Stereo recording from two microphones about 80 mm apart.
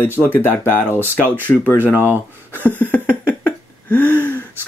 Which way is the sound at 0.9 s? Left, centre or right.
Right.